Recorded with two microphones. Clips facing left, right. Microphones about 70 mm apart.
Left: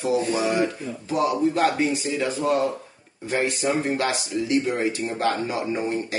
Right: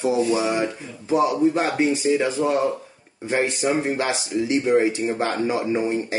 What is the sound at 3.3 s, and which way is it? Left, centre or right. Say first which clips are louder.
Speech: right 2 dB; right.